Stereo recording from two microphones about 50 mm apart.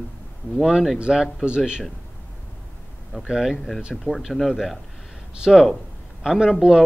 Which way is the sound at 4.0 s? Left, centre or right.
Centre.